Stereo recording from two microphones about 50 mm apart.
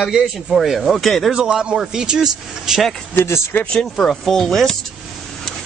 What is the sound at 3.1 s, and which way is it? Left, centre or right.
Speech, left.